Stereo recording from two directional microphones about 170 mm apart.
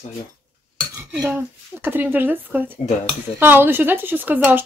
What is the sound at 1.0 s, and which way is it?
A woman's voice, 10° right (ahead or behind).